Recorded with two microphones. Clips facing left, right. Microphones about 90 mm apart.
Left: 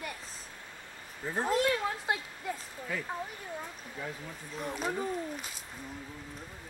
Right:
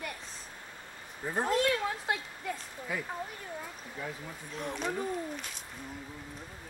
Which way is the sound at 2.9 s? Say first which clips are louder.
Even; 15° right (ahead or behind).